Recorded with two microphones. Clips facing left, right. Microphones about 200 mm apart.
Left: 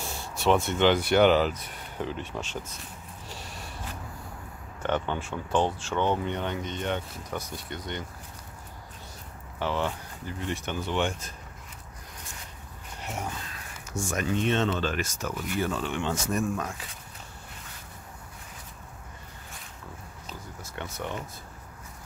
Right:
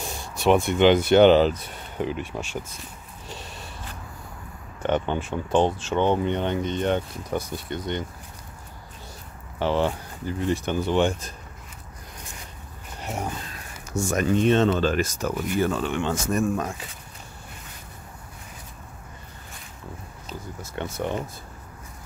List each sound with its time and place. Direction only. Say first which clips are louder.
0.0 s speech: right 4 dB; 15° right (ahead or behind)
2.0 s speech: right 5 dB; 15° right (ahead or behind)
3.3 s snort: right 4 dB; 20° right (ahead or behind)
4.8 s speech: right 4 dB; 20° right (ahead or behind)
9.6 s speech: right 6 dB; 30° right (ahead or behind)
13.0 s a sound: right 4 dB; 35° right (ahead or behind)
13.8 s speech: right 6 dB; 40° right (ahead or behind)
15.3 s speech: right 5 dB; 50° right (ahead or behind)
20.6 s speech: right 7 dB; 30° right (ahead or behind)